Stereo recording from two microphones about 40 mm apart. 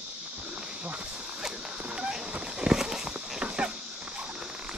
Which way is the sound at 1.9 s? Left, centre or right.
Right.